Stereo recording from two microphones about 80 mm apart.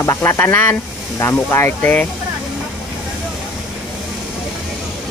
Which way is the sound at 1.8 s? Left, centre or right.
Centre.